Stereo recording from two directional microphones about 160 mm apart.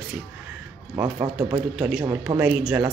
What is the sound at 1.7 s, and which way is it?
Speech, 5° right (ahead or behind).